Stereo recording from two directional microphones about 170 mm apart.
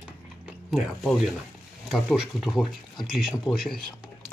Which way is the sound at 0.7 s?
Centre (ahead or behind).